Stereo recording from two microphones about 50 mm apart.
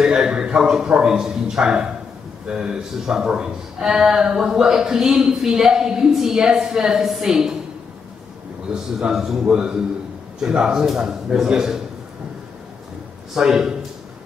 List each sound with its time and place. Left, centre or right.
0.0 s a man's voice: centre
8.7 s a man's voice: centre
9.4 s a man's voice: right
13.3 s a man's voice: centre